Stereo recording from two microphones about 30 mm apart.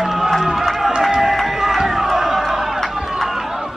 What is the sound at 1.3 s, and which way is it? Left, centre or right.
Music, centre.